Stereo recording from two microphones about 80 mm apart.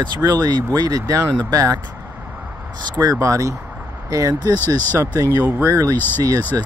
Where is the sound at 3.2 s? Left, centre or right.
Right.